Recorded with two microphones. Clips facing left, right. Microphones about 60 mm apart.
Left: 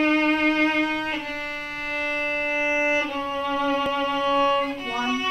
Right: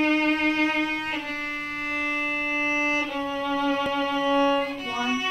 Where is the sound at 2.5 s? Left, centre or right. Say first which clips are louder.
Left 3 dB; centre.